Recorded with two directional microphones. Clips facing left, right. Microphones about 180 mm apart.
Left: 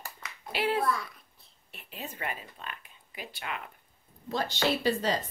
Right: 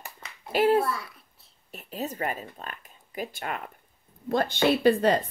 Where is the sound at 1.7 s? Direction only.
40° right (ahead or behind).